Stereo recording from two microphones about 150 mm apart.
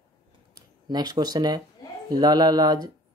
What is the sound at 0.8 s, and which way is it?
Speech, 25° right (ahead or behind).